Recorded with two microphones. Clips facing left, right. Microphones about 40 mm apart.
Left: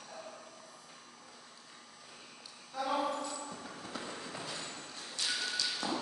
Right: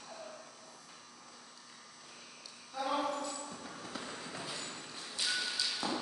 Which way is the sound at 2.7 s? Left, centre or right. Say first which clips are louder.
Left 1 dB; centre.